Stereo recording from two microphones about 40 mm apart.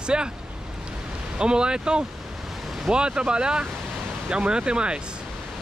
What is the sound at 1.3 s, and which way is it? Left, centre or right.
Speech, right.